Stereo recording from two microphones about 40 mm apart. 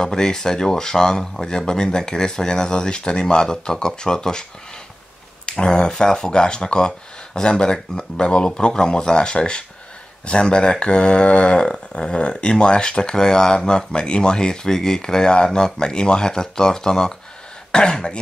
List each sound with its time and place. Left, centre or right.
0.0 s speech: centre
5.5 s speech: left